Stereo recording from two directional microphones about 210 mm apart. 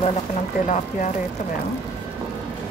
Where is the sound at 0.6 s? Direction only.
35° left (ahead or behind).